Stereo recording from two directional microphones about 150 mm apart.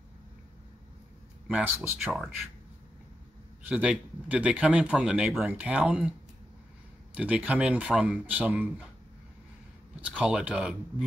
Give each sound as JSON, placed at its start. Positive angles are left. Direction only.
{"t": 1.5, "sound": "speech", "side_deg": -10}
{"t": 3.6, "sound": "speech", "side_deg": -5}
{"t": 7.2, "sound": "speech", "side_deg": -10}
{"t": 10.0, "sound": "speech", "side_deg": -5}